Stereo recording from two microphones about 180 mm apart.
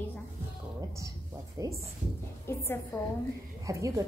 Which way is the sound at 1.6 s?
15° right (ahead or behind).